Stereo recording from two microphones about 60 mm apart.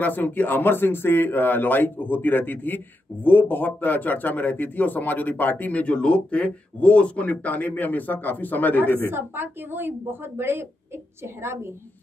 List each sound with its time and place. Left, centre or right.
0.0 s speech: left
9.1 s a woman's voice: right